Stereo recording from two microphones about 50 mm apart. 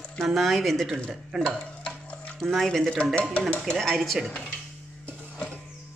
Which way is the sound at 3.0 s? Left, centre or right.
Left.